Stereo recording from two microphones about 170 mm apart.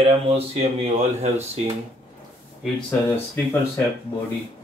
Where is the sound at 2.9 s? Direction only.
10° left (ahead or behind).